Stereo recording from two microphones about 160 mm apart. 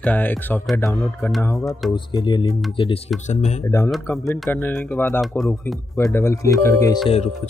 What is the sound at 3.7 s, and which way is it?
Speech, 20° left (ahead or behind).